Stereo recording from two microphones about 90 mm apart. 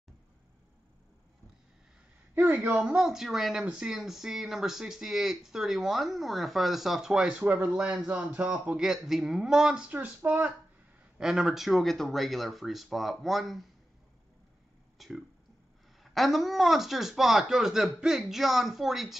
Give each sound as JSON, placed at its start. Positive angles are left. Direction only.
{"t": 2.4, "sound": "speech", "side_deg": -5}
{"t": 11.1, "sound": "speech", "side_deg": -5}
{"t": 15.0, "sound": "speech", "side_deg": 0}